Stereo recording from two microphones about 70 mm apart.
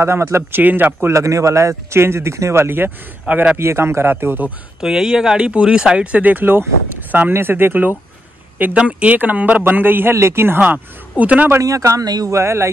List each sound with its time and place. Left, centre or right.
0.0 s speech: right
1.1 s speech: right
4.7 s a man's voice: centre; by 7.9 s right
8.7 s a man's voice: centre; by 10.6 s right
10.6 s a man's voice: centre
11.6 s speech: right
12.0 s speech: right
12.3 s speech: right